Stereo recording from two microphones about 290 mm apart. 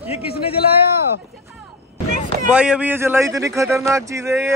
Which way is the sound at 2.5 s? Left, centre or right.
Centre.